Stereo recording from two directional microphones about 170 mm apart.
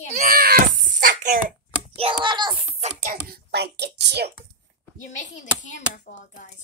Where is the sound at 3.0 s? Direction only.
60° right (ahead or behind); by 4.3 s 75° right (ahead or behind).